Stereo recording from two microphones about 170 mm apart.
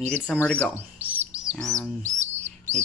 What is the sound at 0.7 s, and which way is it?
Chirp, 10° right (ahead or behind).